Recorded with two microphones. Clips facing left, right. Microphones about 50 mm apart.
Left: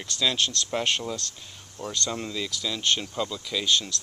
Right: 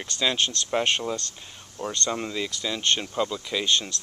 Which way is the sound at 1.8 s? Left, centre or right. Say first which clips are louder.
Right 3 dB; right.